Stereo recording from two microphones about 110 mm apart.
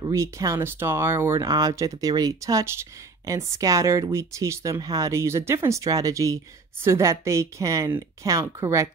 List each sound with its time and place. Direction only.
0.0 s speech: 30° right (ahead or behind)
1.5 s speech: 35° right (ahead or behind)